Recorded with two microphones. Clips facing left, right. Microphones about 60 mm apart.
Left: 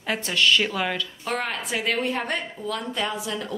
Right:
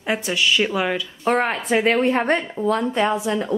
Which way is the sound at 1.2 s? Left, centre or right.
Right.